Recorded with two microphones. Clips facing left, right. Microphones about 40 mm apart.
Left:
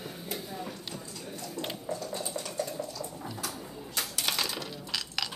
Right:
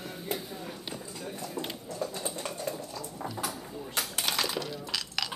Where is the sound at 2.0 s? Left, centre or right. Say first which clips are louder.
Right 1 dB; right.